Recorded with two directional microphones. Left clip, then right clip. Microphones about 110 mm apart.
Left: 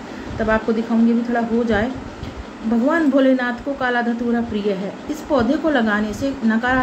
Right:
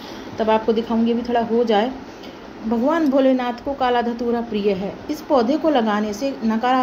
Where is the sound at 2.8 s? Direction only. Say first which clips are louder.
Left 1 dB; 25° right (ahead or behind).